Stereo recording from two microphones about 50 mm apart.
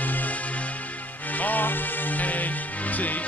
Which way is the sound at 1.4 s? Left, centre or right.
Left.